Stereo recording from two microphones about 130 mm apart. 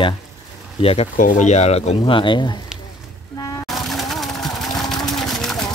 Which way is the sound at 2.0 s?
40° left (ahead or behind).